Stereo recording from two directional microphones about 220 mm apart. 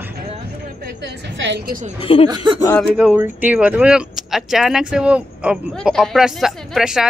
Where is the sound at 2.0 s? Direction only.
25° left (ahead or behind).